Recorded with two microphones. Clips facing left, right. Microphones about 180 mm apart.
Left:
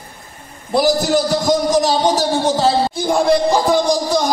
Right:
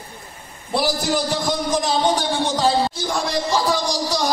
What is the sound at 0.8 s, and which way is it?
Speech, 40° left (ahead or behind).